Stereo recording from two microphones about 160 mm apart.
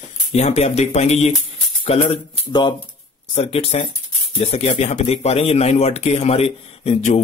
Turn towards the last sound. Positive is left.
turn(degrees=40)  # may be behind; listen again after turning